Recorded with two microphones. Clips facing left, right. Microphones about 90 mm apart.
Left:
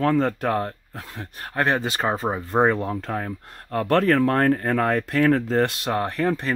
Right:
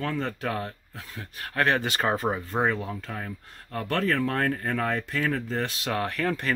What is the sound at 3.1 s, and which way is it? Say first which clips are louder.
Speech: left 7 dB; 45° left (ahead or behind).